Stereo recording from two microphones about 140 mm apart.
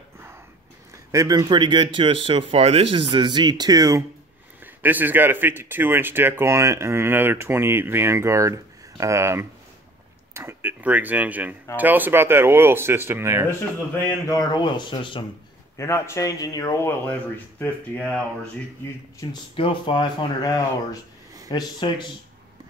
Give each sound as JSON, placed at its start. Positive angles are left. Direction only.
{"t": 1.1, "sound": "speech", "side_deg": -25}
{"t": 4.8, "sound": "speech", "side_deg": -15}
{"t": 14.2, "sound": "speech", "side_deg": 25}
{"t": 15.8, "sound": "speech", "side_deg": 20}
{"t": 19.5, "sound": "speech", "side_deg": 40}